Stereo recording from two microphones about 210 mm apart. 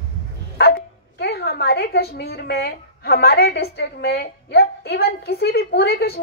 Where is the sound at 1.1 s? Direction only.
50° left (ahead or behind).